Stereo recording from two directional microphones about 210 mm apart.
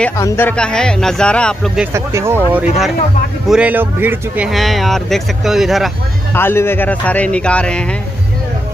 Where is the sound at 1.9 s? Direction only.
10° right (ahead or behind).